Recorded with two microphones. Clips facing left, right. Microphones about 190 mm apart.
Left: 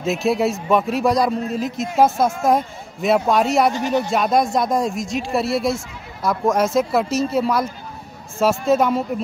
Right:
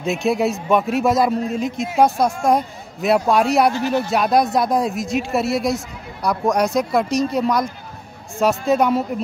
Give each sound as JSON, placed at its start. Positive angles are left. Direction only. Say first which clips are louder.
{"t": 0.0, "sound": "a man's voice", "louder": "even", "side_deg": 0}
{"t": 3.7, "sound": "speech", "louder": "even", "side_deg": 15}
{"t": 4.1, "sound": "a man's voice", "louder": "right 2 dB", "side_deg": 0}